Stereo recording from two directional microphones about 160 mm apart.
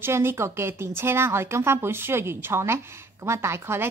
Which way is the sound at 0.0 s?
15° right (ahead or behind).